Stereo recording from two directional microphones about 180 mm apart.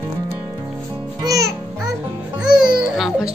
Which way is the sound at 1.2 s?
20° right (ahead or behind).